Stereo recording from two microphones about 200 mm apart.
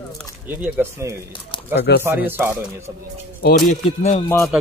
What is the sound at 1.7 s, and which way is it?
Speech, 60° left (ahead or behind).